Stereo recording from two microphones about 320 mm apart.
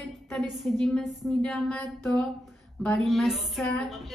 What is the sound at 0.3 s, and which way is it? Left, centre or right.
A woman's voice, centre.